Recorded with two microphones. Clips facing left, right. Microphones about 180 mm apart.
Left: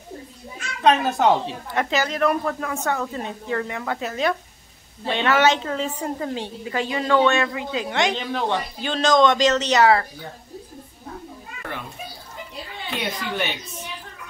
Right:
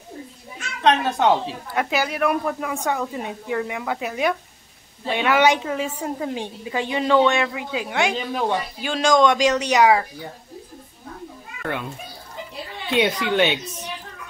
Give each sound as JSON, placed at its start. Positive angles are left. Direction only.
{"t": 0.8, "sound": "a woman's voice", "side_deg": 0}
{"t": 12.9, "sound": "speech", "side_deg": -90}